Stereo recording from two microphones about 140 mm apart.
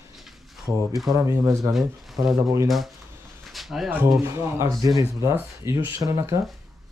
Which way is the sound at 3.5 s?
Centre (ahead or behind).